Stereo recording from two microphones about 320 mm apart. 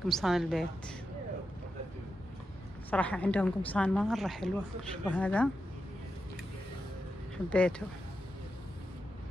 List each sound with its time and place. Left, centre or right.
0.0 s a woman's voice: centre
2.9 s a woman's voice: centre
7.4 s a woman's voice: centre